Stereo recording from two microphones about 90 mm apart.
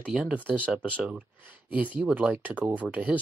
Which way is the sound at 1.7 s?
15° right (ahead or behind).